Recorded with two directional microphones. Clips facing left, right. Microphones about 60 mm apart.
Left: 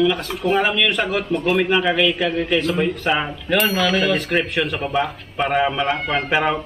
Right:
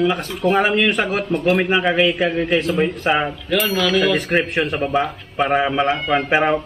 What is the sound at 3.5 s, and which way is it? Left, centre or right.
Speech, centre.